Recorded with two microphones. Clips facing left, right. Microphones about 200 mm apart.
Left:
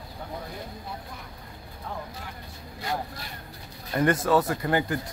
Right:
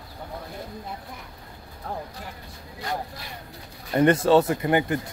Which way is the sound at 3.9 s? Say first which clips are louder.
Right 5 dB; 25° right (ahead or behind).